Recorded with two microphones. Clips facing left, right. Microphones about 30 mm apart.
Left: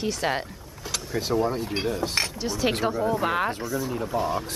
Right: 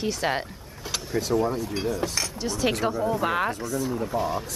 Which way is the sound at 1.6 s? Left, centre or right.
Left.